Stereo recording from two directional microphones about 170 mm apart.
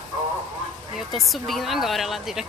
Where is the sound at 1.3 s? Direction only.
Centre (ahead or behind).